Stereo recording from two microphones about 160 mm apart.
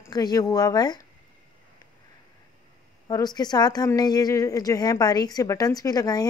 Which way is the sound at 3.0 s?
25° left (ahead or behind).